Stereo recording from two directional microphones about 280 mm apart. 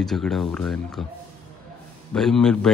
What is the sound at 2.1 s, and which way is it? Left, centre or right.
Speech, centre.